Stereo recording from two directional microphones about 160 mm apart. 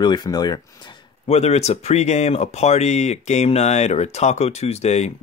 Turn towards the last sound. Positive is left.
turn(degrees=45)  # may be behind; listen again after turning